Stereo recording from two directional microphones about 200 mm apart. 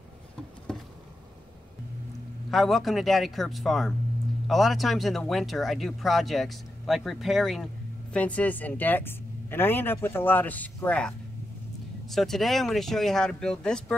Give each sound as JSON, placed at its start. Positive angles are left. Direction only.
{"t": 0.7, "sound": "insect", "side_deg": 5}
{"t": 2.5, "sound": "speech", "side_deg": 0}